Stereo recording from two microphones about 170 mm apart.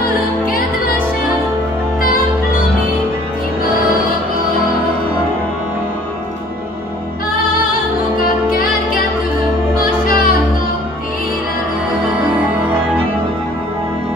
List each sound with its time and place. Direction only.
8.2 s music: 60° left (ahead or behind)
10.0 s music: 60° left (ahead or behind)